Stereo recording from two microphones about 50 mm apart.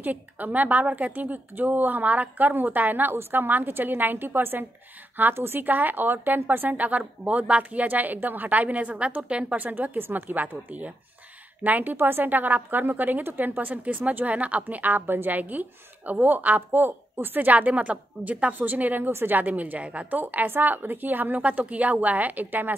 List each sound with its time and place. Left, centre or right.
0.0 s a woman's voice: right
9.6 s a woman's voice: right